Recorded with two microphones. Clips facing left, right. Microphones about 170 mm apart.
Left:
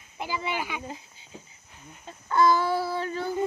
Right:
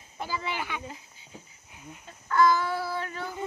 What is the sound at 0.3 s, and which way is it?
Speech, 15° left (ahead or behind).